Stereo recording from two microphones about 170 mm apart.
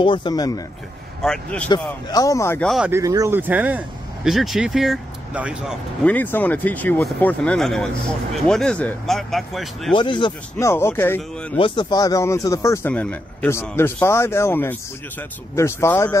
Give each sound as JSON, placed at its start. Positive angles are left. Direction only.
{"t": 0.0, "sound": "speech", "side_deg": 30}
{"t": 1.2, "sound": "speech", "side_deg": 5}
{"t": 1.7, "sound": "speech", "side_deg": 25}
{"t": 2.9, "sound": "speech", "side_deg": -20}
{"t": 6.0, "sound": "speech", "side_deg": 10}
{"t": 9.9, "sound": "speech", "side_deg": 30}
{"t": 10.6, "sound": "speech", "side_deg": 15}
{"t": 11.5, "sound": "speech", "side_deg": 30}